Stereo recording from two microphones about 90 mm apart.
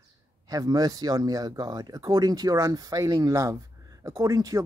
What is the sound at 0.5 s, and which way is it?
Speech, 45° right (ahead or behind).